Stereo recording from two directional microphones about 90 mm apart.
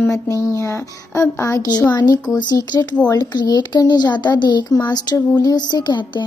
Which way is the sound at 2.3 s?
50° left (ahead or behind).